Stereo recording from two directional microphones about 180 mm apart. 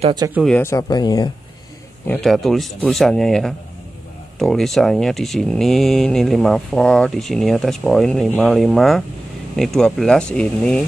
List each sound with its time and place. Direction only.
0.5 s speech: 15° left (ahead or behind)
2.0 s speech: centre (ahead or behind)